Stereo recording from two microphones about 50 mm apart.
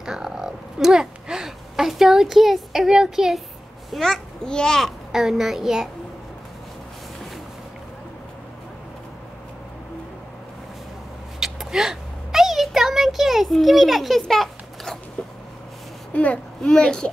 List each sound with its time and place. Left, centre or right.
0.0 s a sound: centre
3.9 s a child's voice: centre
5.1 s a child's voice: centre
11.3 s a sound: centre
16.1 s speech: left
16.6 s a child's voice: centre